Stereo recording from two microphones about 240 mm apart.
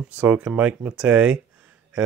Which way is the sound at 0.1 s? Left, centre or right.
Centre.